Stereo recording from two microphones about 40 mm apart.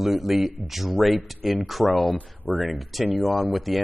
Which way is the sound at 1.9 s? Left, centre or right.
Left.